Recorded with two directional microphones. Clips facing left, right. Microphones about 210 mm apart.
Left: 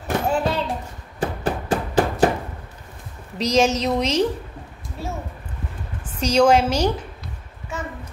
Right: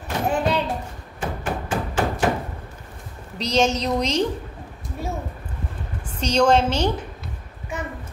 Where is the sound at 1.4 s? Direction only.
35° left (ahead or behind).